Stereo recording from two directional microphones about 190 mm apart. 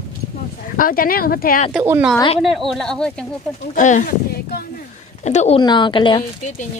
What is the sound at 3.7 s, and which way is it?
A woman's voice, 40° left (ahead or behind).